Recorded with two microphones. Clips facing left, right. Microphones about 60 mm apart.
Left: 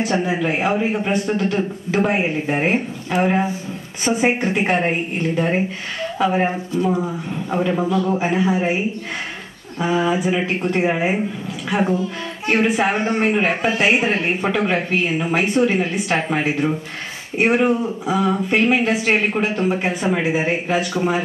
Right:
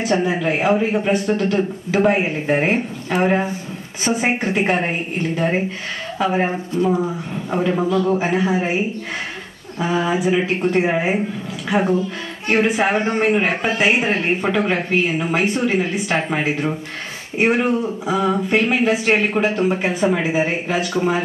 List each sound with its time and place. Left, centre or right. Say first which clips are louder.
0.0 s speech: right 1 dB; centre
9.8 s speech: left 1 dB; centre
12.4 s speech: right 1 dB; centre